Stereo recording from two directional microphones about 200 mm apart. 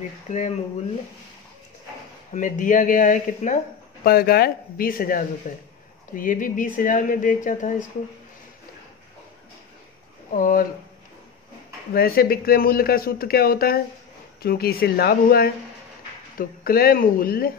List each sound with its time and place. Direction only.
0.3 s speech: 35° left (ahead or behind)
2.3 s speech: 40° left (ahead or behind)
10.3 s speech: 45° left (ahead or behind)
11.9 s speech: 50° left (ahead or behind)